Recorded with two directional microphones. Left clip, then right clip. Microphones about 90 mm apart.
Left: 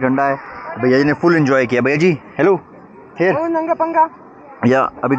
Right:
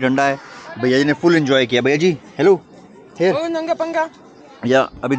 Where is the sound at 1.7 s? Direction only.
20° left (ahead or behind).